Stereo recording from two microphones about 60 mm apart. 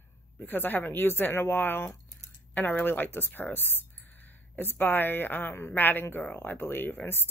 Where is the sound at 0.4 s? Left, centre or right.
Left.